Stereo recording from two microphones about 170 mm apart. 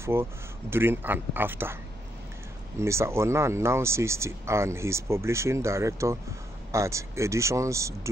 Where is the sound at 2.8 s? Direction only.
15° right (ahead or behind).